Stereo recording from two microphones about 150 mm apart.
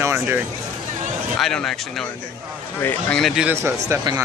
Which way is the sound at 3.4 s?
15° right (ahead or behind).